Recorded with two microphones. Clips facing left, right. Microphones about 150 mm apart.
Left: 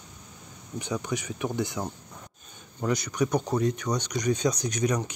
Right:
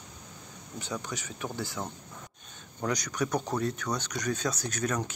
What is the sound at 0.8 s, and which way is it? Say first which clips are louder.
Speech: left 6 dB; 10° left (ahead or behind).